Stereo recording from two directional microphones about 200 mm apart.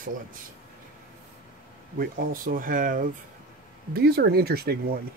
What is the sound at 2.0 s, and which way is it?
Speech, 45° right (ahead or behind).